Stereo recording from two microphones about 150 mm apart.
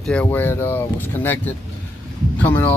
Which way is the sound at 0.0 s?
10° left (ahead or behind).